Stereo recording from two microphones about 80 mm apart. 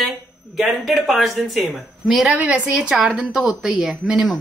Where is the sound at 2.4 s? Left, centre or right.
Centre.